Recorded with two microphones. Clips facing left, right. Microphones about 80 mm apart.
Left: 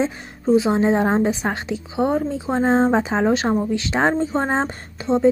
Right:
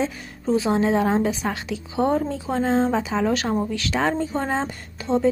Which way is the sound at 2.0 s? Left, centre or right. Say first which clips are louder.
Left 1 dB; centre.